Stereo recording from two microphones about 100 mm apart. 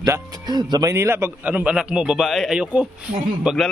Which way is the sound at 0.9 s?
25° right (ahead or behind).